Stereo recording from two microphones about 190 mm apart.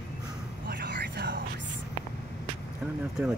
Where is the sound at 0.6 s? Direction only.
60° right (ahead or behind).